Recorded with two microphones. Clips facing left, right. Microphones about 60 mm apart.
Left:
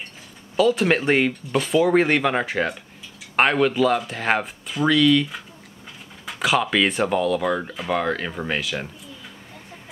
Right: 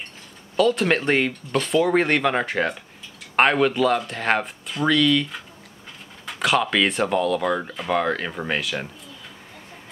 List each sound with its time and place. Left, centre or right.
0.6 s speech: centre